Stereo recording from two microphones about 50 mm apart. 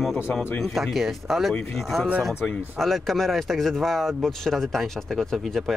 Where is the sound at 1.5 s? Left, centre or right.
Centre.